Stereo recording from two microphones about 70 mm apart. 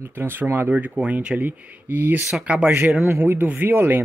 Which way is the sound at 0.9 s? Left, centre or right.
Centre.